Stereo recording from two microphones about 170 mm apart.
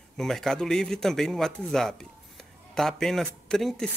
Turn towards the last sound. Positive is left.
turn(degrees=0)  # may be behind; listen again after turning